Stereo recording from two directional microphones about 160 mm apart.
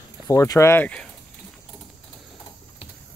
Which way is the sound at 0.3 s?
20° left (ahead or behind).